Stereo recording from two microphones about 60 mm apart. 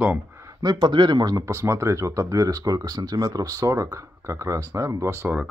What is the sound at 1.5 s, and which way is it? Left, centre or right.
Speech, right.